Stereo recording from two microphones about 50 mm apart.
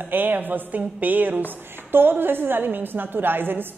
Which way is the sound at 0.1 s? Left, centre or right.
Right.